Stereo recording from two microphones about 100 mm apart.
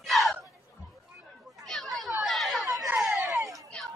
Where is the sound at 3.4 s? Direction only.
35° right (ahead or behind).